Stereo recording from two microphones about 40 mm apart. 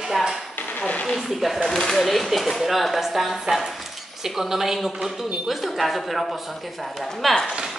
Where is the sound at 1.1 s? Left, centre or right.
Centre.